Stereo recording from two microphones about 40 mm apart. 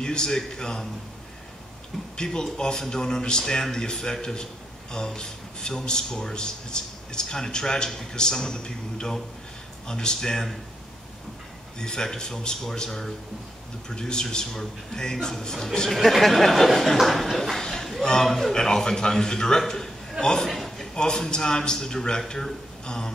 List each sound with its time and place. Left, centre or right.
0.0 s speech: centre
2.1 s speech: centre
11.8 s speech: centre
15.9 s speech: centre
19.7 s a sound: centre
20.4 s speech: centre